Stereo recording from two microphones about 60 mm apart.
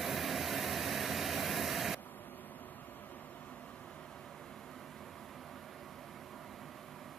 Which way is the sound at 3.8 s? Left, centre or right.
Centre.